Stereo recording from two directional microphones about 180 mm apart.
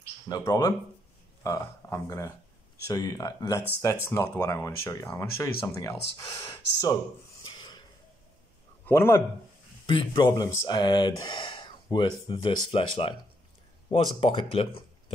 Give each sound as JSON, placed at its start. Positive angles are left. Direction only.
{"t": 0.3, "sound": "speech", "side_deg": 20}
{"t": 7.4, "sound": "a sound", "side_deg": 25}
{"t": 8.8, "sound": "a man's voice", "side_deg": 15}
{"t": 9.8, "sound": "speech", "side_deg": 25}